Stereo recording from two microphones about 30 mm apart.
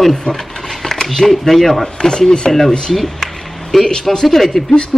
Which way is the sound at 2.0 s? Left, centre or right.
Left.